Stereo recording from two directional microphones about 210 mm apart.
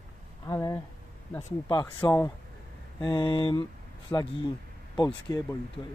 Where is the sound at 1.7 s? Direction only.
20° left (ahead or behind).